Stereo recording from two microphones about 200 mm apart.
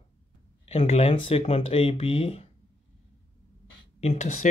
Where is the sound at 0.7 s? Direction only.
30° left (ahead or behind).